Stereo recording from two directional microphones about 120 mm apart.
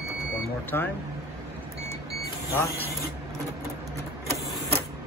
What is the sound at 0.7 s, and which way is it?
Speech, 20° left (ahead or behind).